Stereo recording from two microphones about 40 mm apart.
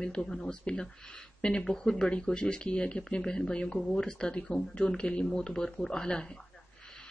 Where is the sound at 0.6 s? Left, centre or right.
Left.